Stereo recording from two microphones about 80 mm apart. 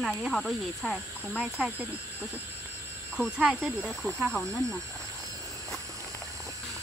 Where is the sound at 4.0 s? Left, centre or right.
Centre.